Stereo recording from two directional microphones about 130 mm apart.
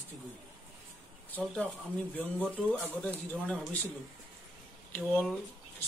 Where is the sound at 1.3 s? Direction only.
15° left (ahead or behind).